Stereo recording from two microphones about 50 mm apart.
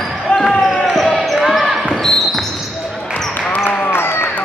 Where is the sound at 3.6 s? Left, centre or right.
Left.